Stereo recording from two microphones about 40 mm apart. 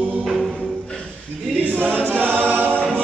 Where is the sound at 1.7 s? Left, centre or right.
Right.